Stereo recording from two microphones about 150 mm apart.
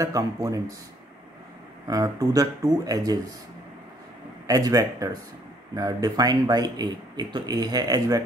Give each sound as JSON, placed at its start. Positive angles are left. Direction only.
{"t": 0.0, "sound": "speech", "side_deg": -20}
{"t": 1.9, "sound": "speech", "side_deg": -25}
{"t": 4.5, "sound": "speech", "side_deg": -25}